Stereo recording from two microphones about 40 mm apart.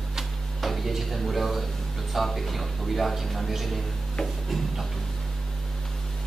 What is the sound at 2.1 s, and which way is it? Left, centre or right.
A man's voice, centre.